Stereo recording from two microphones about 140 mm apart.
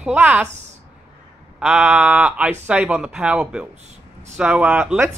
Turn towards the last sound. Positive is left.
turn(degrees=-15)  # may be behind; listen again after turning